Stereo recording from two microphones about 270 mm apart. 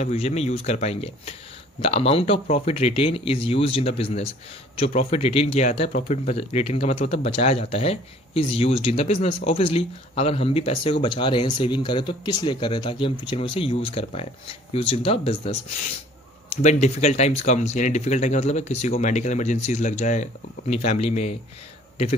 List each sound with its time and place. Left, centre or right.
0.0 s speech: left